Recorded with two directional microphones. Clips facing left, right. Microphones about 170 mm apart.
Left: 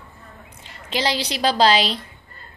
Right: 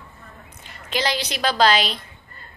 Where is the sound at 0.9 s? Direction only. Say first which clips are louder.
Left 1 dB; 30° left (ahead or behind).